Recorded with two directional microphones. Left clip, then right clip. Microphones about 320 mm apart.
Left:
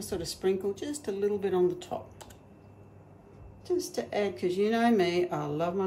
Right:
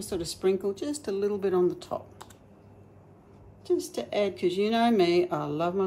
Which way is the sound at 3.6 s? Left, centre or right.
Centre.